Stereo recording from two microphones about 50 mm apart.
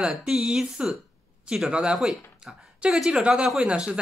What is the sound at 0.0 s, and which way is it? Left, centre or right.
Speech, centre.